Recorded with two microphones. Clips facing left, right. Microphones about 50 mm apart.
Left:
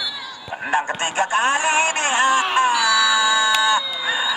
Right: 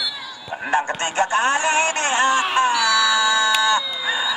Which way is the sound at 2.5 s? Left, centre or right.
Centre.